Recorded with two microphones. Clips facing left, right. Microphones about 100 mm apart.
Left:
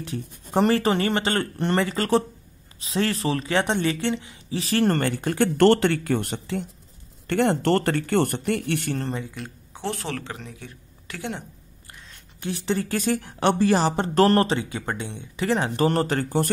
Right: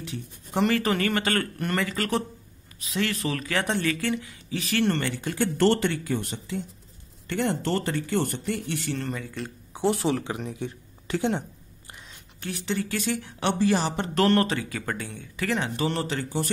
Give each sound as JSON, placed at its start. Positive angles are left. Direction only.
{"t": 0.0, "sound": "speech", "side_deg": 40}
{"t": 8.9, "sound": "speech", "side_deg": 35}
{"t": 9.8, "sound": "speech", "side_deg": -15}
{"t": 11.1, "sound": "a woman's voice", "side_deg": -30}
{"t": 12.4, "sound": "speech", "side_deg": 30}
{"t": 12.7, "sound": "speech", "side_deg": 40}
{"t": 15.5, "sound": "speech", "side_deg": 40}